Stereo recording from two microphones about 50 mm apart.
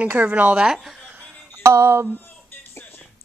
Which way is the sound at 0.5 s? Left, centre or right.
Centre.